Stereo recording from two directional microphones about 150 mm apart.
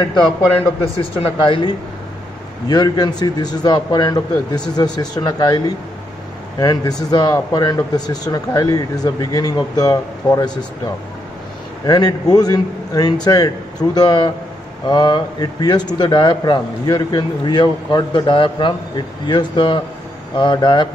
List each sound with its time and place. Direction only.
1.1 s speech: 35° left (ahead or behind)
2.7 s speech: 30° left (ahead or behind)
6.6 s speech: 25° left (ahead or behind)
11.8 s speech: 25° left (ahead or behind)